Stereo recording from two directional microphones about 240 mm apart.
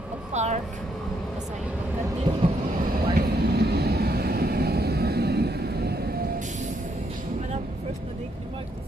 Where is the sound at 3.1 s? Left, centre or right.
Right.